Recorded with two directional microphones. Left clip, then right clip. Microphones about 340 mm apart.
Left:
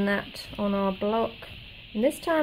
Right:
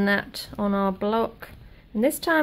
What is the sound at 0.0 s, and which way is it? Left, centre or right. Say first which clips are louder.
Speech: right 4 dB; centre.